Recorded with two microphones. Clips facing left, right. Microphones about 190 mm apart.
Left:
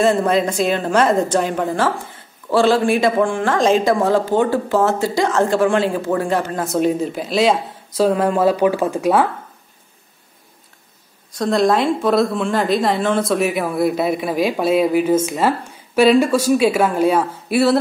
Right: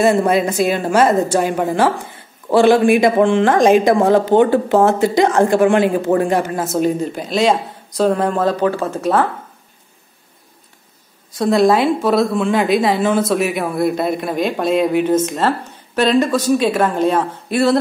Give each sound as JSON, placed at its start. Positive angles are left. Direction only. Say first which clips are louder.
{"t": 0.0, "sound": "a woman's voice", "louder": "right 2 dB", "side_deg": -10}
{"t": 6.6, "sound": "a woman's voice", "louder": "even", "side_deg": 0}
{"t": 11.3, "sound": "a woman's voice", "louder": "right 3 dB", "side_deg": -5}